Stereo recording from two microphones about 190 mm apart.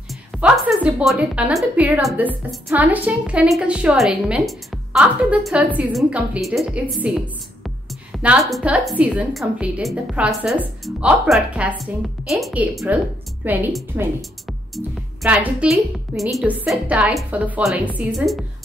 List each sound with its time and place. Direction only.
0.4 s a woman's voice: 5° right (ahead or behind)
15.2 s a woman's voice: 10° right (ahead or behind)